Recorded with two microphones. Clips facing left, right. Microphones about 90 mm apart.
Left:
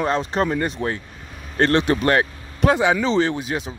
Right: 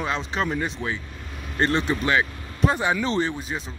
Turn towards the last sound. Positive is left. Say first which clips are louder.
# left 5 dB
turn(degrees=70)  # may be behind; listen again after turning